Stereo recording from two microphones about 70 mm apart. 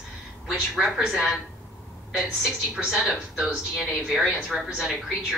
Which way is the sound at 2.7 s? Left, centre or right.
Centre.